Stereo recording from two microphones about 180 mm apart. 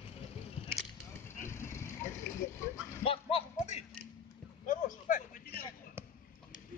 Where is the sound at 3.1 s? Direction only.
30° left (ahead or behind); by 5.7 s 55° left (ahead or behind).